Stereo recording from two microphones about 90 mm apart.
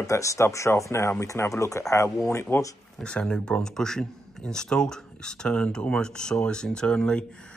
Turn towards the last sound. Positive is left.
turn(degrees=10)  # may be behind; listen again after turning